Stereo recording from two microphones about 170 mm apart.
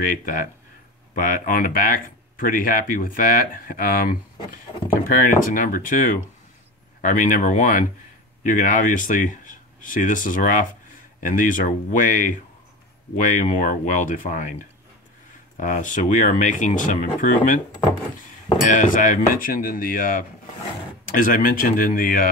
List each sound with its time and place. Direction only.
0.0 s speech: 55° left (ahead or behind)
15.6 s speech: 50° left (ahead or behind)
18.6 s speech: 50° left (ahead or behind)